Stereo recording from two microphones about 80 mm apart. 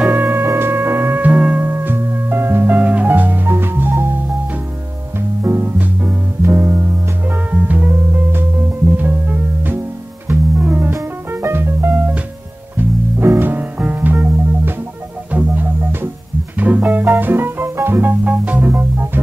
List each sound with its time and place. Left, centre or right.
0.1 s music: right
2.8 s music: centre
5.4 s music: right
13.2 s music: right
18.2 s music: centre